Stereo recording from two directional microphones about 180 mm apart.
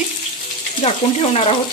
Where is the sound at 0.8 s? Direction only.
35° left (ahead or behind).